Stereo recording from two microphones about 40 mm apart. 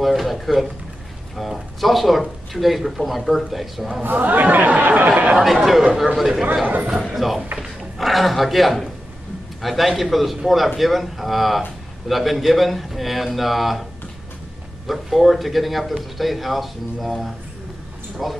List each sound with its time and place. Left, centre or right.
0.0 s speech: centre
4.0 s speech: right
5.4 s speech: centre
7.5 s a sound: centre
8.1 s speech: centre
14.9 s speech: centre